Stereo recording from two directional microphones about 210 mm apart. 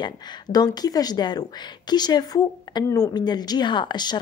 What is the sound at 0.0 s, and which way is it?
Speech, 20° left (ahead or behind).